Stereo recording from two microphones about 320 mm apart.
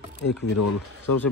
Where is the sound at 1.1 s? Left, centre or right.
Left.